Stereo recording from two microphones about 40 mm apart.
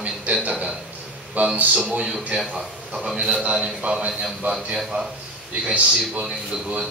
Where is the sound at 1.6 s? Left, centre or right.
Right.